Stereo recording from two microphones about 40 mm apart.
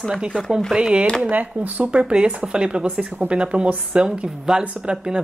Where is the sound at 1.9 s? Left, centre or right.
Right.